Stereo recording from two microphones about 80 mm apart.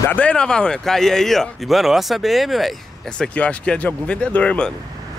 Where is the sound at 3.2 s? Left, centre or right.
Centre.